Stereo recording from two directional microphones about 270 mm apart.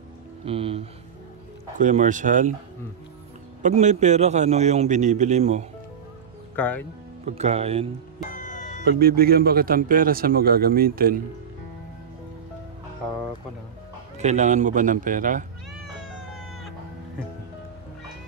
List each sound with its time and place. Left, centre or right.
0.5 s a man's voice: right
3.6 s a man's voice: right
6.5 s speech: centre
7.2 s a man's voice: right
8.3 s music: left
8.8 s a man's voice: right
14.1 s a man's voice: right